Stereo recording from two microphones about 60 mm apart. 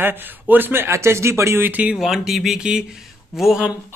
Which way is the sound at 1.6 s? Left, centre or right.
Right.